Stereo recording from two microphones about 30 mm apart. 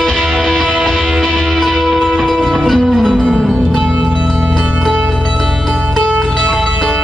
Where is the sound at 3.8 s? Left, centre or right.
Right.